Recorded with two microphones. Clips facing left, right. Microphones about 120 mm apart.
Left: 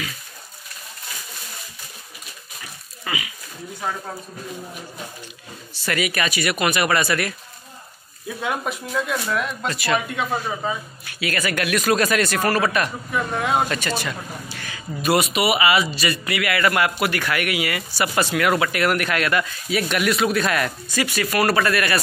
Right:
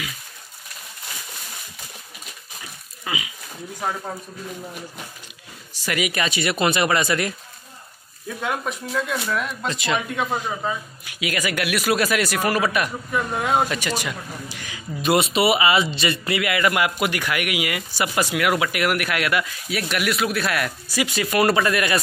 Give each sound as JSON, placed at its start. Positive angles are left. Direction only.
{"t": 3.1, "sound": "a sound", "side_deg": -15}
{"t": 5.9, "sound": "speech", "side_deg": -15}
{"t": 8.3, "sound": "speech", "side_deg": 5}
{"t": 9.7, "sound": "speech", "side_deg": -20}
{"t": 9.9, "sound": "speech", "side_deg": 0}
{"t": 11.1, "sound": "speech", "side_deg": -15}
{"t": 13.7, "sound": "speech", "side_deg": -15}
{"t": 21.0, "sound": "speech", "side_deg": -20}